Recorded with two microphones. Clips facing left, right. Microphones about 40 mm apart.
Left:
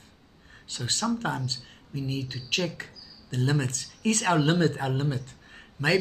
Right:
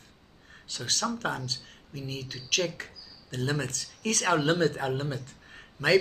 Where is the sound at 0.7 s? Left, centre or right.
Left.